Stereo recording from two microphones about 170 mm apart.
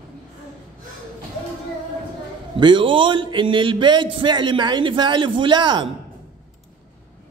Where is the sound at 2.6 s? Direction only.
30° right (ahead or behind).